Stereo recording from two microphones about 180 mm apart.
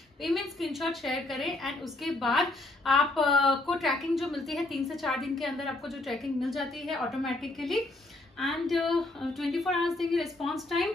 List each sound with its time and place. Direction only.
0.2 s a woman's voice: centre (ahead or behind)